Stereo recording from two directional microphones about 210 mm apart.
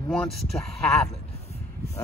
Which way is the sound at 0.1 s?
Centre (ahead or behind).